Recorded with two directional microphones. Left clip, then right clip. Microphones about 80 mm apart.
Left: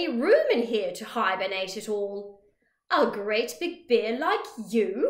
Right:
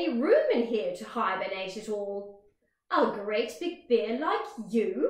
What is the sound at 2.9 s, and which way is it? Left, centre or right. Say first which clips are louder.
A woman's voice: left 3 dB; left.